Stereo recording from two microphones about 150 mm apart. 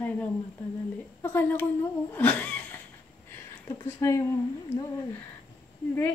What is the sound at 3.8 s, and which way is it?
Speech, 20° left (ahead or behind).